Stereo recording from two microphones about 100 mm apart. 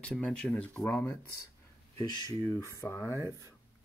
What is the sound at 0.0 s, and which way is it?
Speech, 10° left (ahead or behind).